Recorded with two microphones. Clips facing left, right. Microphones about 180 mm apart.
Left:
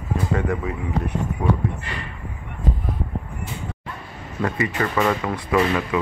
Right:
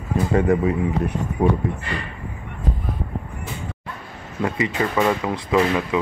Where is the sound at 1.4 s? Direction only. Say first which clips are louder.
Right 4 dB; 30° right (ahead or behind).